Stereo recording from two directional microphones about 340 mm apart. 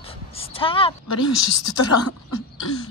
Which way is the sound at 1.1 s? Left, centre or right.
Left.